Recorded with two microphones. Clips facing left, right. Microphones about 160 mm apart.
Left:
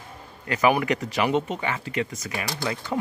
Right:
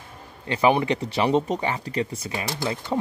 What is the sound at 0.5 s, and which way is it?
Speech, 25° right (ahead or behind).